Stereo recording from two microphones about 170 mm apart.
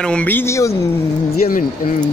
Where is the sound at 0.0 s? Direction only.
5° left (ahead or behind).